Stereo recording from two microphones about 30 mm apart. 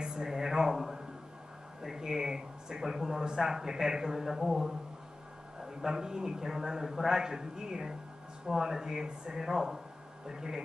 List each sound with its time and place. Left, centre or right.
0.0 s a sound: right
1.8 s speech: centre
4.3 s a man's voice: centre